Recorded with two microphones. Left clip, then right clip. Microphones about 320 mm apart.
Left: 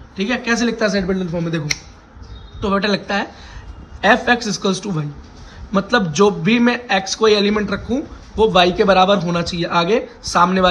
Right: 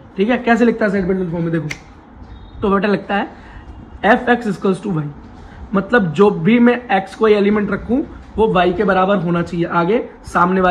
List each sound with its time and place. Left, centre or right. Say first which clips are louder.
0.1 s a man's voice: right 4 dB; centre
2.6 s a man's voice: right 2 dB; centre